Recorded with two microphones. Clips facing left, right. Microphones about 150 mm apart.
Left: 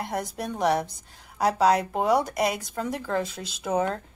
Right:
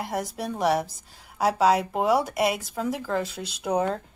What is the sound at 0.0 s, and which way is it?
Speech, centre (ahead or behind).